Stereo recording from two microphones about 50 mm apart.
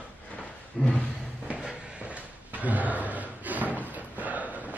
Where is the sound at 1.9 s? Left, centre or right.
Right.